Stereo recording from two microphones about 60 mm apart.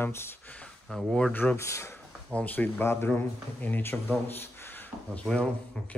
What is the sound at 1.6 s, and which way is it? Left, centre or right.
Speech, left.